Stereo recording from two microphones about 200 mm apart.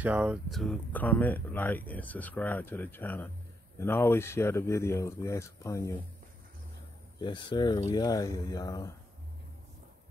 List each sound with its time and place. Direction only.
0.0 s speech: 5° right (ahead or behind); by 6.0 s 15° left (ahead or behind)
7.2 s speech: 25° left (ahead or behind)